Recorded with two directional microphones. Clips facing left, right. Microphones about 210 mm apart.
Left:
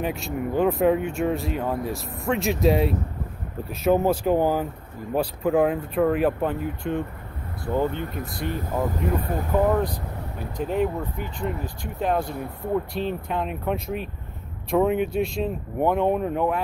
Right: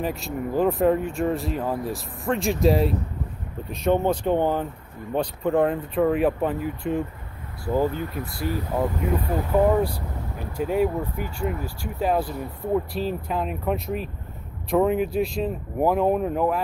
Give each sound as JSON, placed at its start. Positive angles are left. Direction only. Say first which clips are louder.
{"t": 0.0, "sound": "speech", "louder": "even", "side_deg": 0}